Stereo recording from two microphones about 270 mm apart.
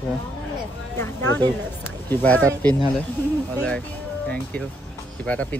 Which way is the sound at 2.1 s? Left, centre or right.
Centre.